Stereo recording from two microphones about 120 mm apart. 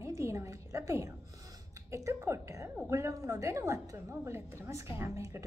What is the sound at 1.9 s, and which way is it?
A woman's voice, 25° right (ahead or behind).